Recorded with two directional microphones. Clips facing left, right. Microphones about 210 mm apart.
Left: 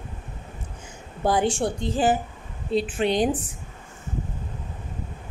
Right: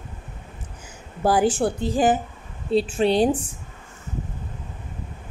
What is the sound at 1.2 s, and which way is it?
A woman's voice, 5° right (ahead or behind).